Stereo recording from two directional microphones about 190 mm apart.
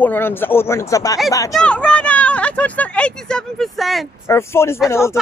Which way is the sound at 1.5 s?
5° left (ahead or behind).